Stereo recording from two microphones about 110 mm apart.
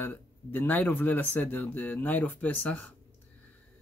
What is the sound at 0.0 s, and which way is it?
Speech, 15° left (ahead or behind).